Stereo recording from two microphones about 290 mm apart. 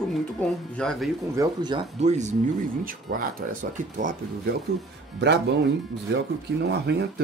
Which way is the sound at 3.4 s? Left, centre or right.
Right.